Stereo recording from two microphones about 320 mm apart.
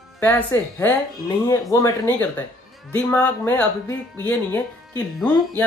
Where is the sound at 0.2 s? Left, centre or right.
Centre.